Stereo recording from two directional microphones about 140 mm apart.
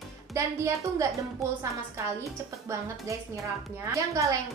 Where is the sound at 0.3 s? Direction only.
20° right (ahead or behind).